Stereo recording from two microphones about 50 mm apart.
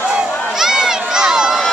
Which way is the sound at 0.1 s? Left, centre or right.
Centre.